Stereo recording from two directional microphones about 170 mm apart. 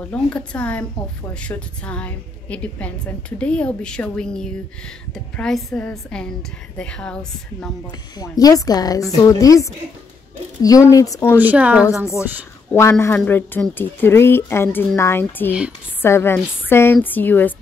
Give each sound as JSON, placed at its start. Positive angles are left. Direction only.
{"t": 0.1, "sound": "a woman's voice", "side_deg": 5}
{"t": 8.2, "sound": "a woman's voice", "side_deg": 20}
{"t": 11.3, "sound": "a woman's voice", "side_deg": -10}
{"t": 13.0, "sound": "a woman's voice", "side_deg": 10}